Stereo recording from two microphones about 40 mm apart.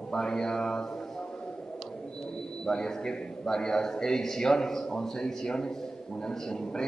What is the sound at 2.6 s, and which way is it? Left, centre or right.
A man's voice, centre.